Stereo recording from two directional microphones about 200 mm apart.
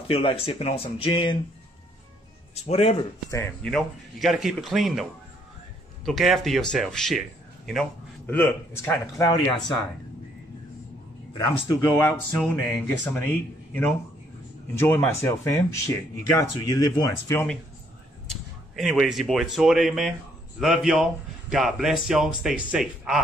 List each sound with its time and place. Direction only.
0.1 s speech: 30° left (ahead or behind)
2.5 s speech: 30° left (ahead or behind)
3.3 s speech: 15° left (ahead or behind)
3.6 s a man's voice: centre (ahead or behind)
6.0 s a man's voice: centre (ahead or behind)
11.8 s speech: 10° left (ahead or behind)
18.2 s a man's voice: centre (ahead or behind)